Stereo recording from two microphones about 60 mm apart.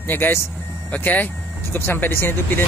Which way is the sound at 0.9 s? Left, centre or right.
Left.